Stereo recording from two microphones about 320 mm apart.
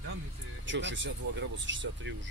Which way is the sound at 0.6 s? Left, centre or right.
Right.